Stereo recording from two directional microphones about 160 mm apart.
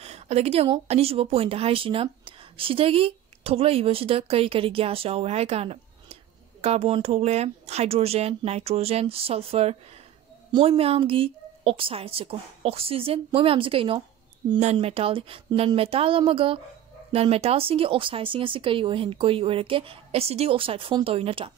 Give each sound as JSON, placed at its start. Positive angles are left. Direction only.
{"t": 0.0, "sound": "speech", "side_deg": -40}